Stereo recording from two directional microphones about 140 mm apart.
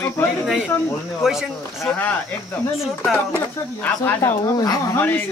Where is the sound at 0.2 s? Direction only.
15° left (ahead or behind).